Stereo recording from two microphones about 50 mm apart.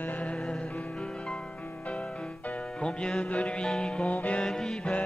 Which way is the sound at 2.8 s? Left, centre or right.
Centre.